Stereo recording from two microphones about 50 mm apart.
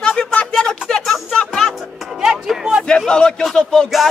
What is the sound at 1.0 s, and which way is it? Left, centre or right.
Music, centre.